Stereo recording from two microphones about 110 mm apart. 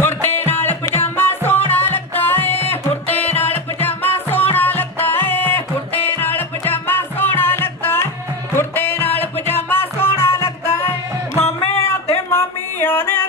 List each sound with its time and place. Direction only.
0.0 s music: 20° left (ahead or behind)
11.3 s music: 65° left (ahead or behind)
12.3 s music: 20° left (ahead or behind)